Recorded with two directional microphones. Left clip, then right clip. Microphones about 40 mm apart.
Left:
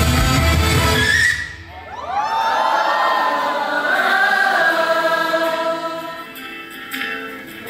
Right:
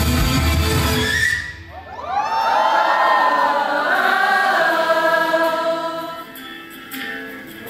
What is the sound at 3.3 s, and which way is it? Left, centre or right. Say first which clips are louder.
Crowd: right 2 dB; right.